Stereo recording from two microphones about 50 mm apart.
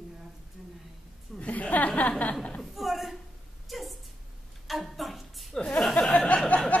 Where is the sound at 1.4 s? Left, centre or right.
Left.